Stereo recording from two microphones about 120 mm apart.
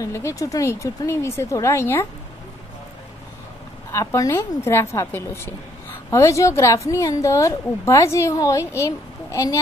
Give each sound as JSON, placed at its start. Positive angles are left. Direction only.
{"t": 0.0, "sound": "a woman's voice", "side_deg": 25}
{"t": 3.9, "sound": "a woman's voice", "side_deg": 25}